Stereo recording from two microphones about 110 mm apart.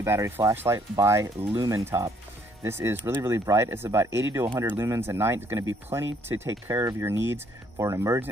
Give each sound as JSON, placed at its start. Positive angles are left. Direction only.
{"t": 0.0, "sound": "speech", "side_deg": -25}